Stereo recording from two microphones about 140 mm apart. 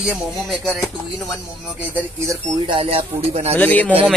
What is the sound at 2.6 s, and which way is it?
Speech, 40° right (ahead or behind).